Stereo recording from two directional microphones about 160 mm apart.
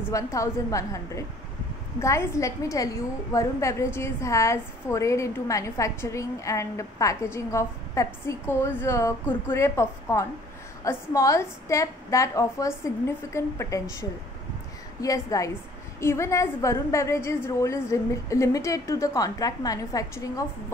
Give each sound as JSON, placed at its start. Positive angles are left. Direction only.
{"t": 0.1, "sound": "a woman's voice", "side_deg": 20}